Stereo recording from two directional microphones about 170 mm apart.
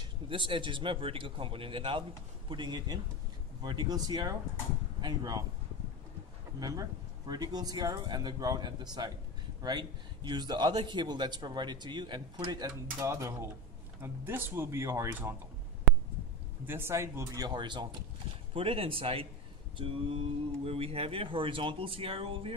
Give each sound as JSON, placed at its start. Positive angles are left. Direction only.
{"t": 0.0, "sound": "a man's voice", "side_deg": -30}
{"t": 6.6, "sound": "a man's voice", "side_deg": -20}
{"t": 16.6, "sound": "speech", "side_deg": -15}